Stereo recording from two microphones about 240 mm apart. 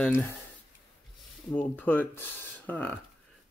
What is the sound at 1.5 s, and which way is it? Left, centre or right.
Speech, centre.